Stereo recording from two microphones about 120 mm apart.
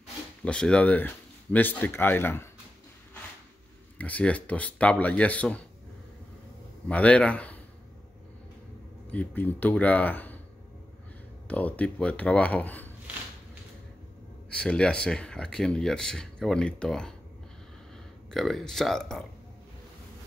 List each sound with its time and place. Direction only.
0.5 s speech: 10° left (ahead or behind)
4.0 s speech: 10° left (ahead or behind)
6.9 s speech: 10° left (ahead or behind)
9.1 s speech: 15° left (ahead or behind)
11.4 s speech: 10° left (ahead or behind)
14.5 s speech: 10° left (ahead or behind)
18.3 s speech: 5° left (ahead or behind)